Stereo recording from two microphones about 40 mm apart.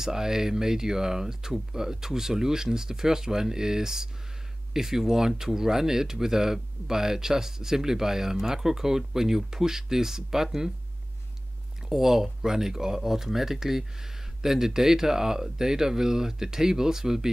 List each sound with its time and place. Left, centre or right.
0.0 s speech: centre
11.9 s speech: centre